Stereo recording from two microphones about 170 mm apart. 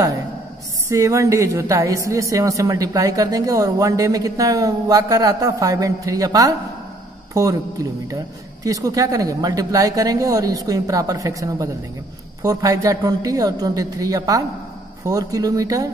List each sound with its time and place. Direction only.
0.8 s a woman's voice: 20° right (ahead or behind)
8.6 s a woman's voice: 20° right (ahead or behind)